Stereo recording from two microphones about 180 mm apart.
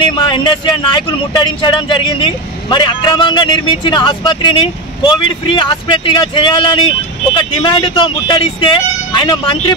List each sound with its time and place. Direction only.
0.2 s speech: 25° left (ahead or behind)